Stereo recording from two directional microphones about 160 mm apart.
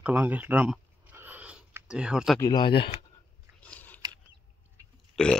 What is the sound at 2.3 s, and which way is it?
Speech, 25° left (ahead or behind).